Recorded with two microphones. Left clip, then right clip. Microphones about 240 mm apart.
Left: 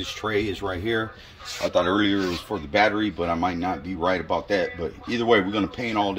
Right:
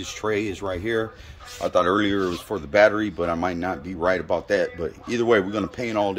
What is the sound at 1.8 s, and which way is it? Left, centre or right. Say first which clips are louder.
Speech: right 1 dB; right.